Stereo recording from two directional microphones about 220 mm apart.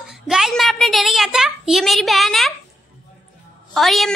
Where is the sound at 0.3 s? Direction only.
Centre (ahead or behind).